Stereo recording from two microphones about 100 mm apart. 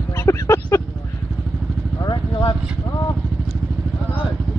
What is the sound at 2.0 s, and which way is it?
Vehicle, 45° left (ahead or behind).